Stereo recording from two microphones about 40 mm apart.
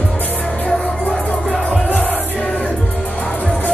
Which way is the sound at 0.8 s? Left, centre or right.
Left.